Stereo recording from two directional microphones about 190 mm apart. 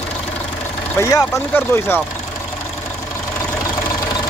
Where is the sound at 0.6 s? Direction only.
10° left (ahead or behind).